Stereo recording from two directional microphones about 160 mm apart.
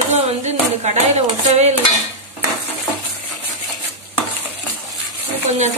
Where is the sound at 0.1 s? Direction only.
45° right (ahead or behind).